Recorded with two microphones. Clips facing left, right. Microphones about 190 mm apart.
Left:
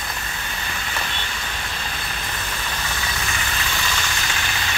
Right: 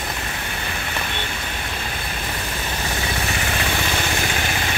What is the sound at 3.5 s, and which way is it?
Vehicle, 55° right (ahead or behind).